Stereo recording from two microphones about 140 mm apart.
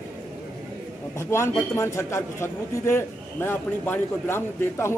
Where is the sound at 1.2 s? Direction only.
20° left (ahead or behind).